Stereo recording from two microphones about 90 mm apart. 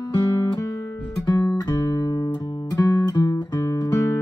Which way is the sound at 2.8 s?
45° left (ahead or behind).